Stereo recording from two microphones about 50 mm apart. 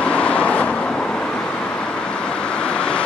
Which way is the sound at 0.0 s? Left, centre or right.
Left.